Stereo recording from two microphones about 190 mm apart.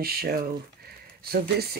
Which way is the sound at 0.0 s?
55° right (ahead or behind).